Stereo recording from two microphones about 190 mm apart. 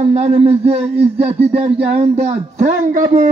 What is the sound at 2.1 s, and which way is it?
Speech, 40° right (ahead or behind).